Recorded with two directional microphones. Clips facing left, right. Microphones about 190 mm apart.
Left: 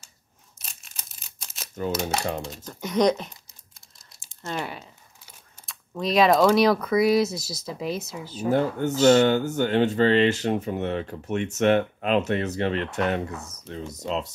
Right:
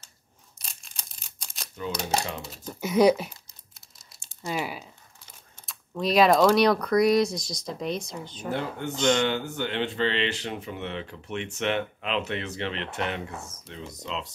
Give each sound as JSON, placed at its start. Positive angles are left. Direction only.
{"t": 0.6, "sound": "a sound", "side_deg": 0}
{"t": 2.4, "sound": "speech", "side_deg": -5}
{"t": 4.4, "sound": "speech", "side_deg": -5}
{"t": 8.5, "sound": "speech", "side_deg": 45}
{"t": 8.9, "sound": "speech", "side_deg": 5}
{"t": 9.2, "sound": "speech", "side_deg": 45}